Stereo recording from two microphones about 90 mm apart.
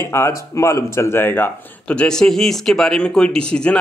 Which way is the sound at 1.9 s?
10° left (ahead or behind).